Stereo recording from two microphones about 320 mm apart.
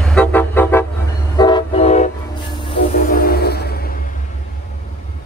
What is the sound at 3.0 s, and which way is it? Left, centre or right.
Music, left.